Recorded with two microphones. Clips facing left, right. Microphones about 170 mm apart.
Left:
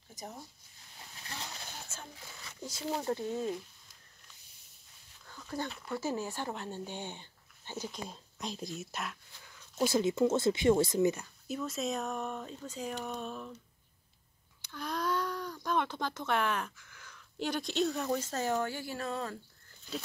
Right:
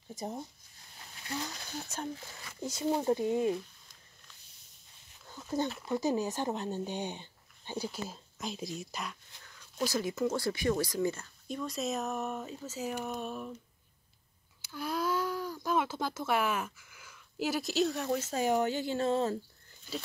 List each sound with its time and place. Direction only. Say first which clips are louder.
0.1 s speech: right 7 dB; 30° right (ahead or behind)
2.6 s speech: right 5 dB; 15° right (ahead or behind)
5.2 s dog: right 5 dB; 20° right (ahead or behind)
5.9 s speech: right 3 dB; 15° right (ahead or behind)
8.1 s a sound: right 1 dB; centre (ahead or behind)
9.8 s speech: left 4 dB; 25° left (ahead or behind)
11.4 s speech: even; 5° left (ahead or behind)
14.6 s speech: right 2 dB; 5° right (ahead or behind); by 19.3 s 25° right (ahead or behind)